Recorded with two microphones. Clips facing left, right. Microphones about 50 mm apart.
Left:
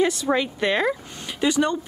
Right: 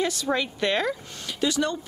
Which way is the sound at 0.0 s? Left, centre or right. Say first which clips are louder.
Left 4 dB; left.